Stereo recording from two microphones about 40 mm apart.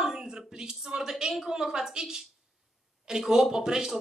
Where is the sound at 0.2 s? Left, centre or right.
Centre.